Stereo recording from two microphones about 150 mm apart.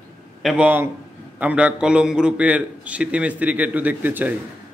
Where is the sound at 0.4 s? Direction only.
5° right (ahead or behind).